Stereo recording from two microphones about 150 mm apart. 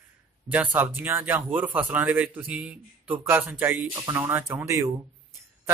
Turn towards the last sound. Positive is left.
turn(degrees=-20)  # may be behind; listen again after turning